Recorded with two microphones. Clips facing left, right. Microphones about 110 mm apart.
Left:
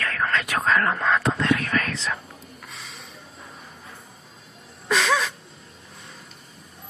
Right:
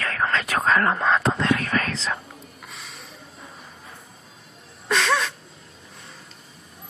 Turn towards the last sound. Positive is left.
turn(degrees=0)  # may be behind; listen again after turning